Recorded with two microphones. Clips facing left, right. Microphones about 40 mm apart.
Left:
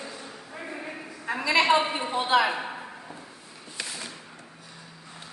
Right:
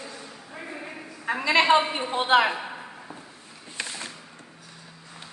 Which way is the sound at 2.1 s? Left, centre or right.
Right.